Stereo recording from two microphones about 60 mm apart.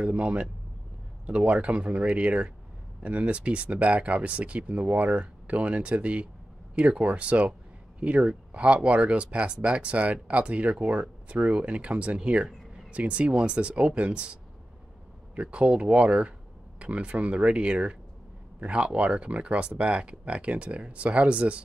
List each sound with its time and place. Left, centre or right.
0.1 s speech: right